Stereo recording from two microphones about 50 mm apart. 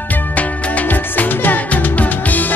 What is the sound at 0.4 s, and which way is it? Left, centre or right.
Music, left.